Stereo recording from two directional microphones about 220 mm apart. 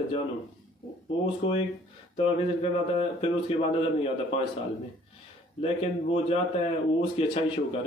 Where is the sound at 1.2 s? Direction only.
25° left (ahead or behind).